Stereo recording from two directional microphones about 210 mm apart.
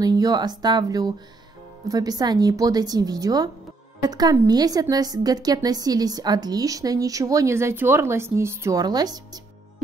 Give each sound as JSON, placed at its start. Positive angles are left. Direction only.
{"t": 0.0, "sound": "a woman's voice", "side_deg": -20}